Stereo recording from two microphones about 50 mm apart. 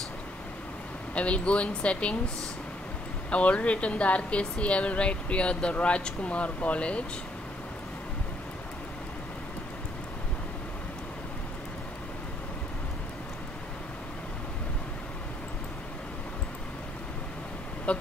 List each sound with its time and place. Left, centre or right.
1.1 s speech: left
3.3 s speech: left
17.9 s vehicle: left